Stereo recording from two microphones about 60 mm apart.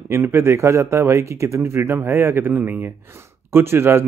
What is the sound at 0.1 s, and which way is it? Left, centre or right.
A man's voice, right.